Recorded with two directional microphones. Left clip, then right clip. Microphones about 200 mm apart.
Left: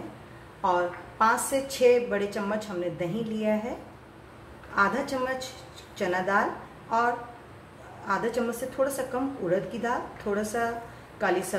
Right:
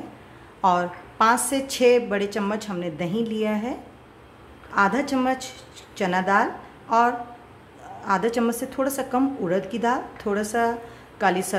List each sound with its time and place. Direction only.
0.6 s a woman's voice: 40° right (ahead or behind)
4.7 s a woman's voice: 40° right (ahead or behind)
8.0 s a woman's voice: 40° right (ahead or behind)